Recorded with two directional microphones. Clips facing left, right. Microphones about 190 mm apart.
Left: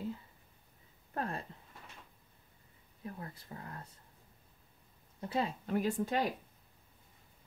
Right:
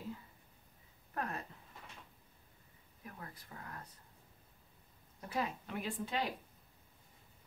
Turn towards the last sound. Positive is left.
turn(degrees=45)  # may be behind; listen again after turning